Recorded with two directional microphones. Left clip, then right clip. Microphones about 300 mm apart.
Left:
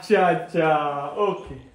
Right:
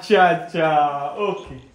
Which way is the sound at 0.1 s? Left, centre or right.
Centre.